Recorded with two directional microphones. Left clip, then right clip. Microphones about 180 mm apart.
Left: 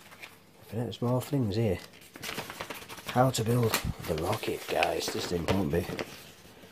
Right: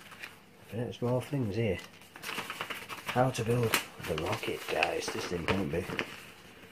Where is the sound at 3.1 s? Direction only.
35° left (ahead or behind).